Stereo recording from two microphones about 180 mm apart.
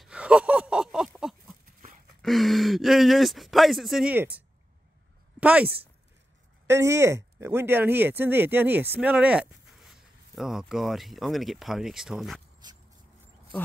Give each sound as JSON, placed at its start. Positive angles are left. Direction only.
{"t": 0.0, "sound": "a sound", "side_deg": -5}
{"t": 2.2, "sound": "speech", "side_deg": 0}
{"t": 5.4, "sound": "speech", "side_deg": -10}
{"t": 12.6, "sound": "vehicle", "side_deg": -25}